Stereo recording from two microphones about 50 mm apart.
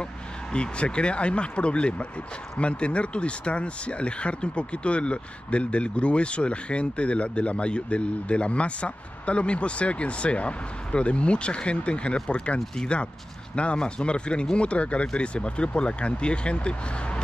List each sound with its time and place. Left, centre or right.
0.0 s speech: centre